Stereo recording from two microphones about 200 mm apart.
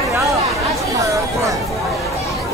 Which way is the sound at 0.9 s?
15° right (ahead or behind).